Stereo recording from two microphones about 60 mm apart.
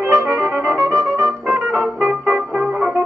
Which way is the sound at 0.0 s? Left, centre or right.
Right.